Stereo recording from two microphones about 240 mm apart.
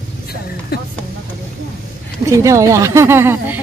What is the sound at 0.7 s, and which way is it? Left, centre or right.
Speech, left.